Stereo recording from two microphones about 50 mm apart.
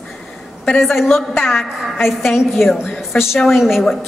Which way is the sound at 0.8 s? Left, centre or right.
Centre.